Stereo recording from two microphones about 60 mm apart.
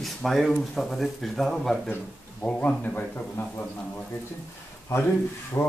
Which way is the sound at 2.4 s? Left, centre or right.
Left.